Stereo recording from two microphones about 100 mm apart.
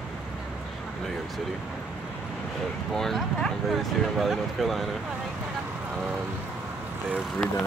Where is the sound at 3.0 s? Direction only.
5° left (ahead or behind).